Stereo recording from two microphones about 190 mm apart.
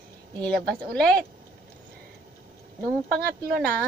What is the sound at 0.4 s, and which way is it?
Speech, 5° left (ahead or behind).